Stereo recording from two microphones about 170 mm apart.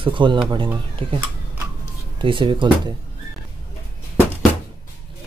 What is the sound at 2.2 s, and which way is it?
Speech, 30° right (ahead or behind).